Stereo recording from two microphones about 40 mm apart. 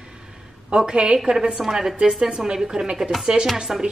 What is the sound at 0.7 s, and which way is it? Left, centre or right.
A woman's voice, right.